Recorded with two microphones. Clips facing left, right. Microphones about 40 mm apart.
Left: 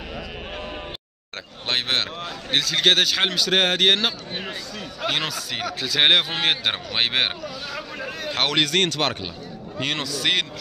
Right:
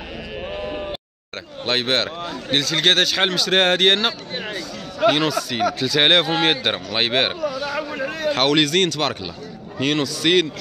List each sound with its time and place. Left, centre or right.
0.5 s bleat: centre
1.7 s speech: centre
7.7 s a sound: centre
8.1 s a sound: centre
8.5 s speech: centre
9.8 s a man's voice: centre